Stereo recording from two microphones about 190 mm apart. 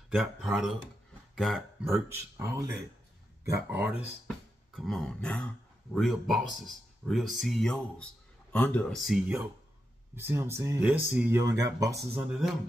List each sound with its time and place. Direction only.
0.1 s speech: centre (ahead or behind)
4.7 s speech: centre (ahead or behind)
10.1 s speech: 10° right (ahead or behind)
12.1 s speech: 5° right (ahead or behind)